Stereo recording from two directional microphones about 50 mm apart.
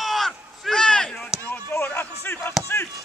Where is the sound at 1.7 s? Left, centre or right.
Left.